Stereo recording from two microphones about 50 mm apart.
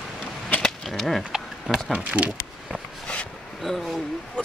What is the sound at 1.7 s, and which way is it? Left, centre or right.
Speech, centre.